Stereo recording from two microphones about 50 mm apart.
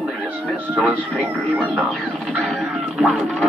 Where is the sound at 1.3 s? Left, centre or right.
Left.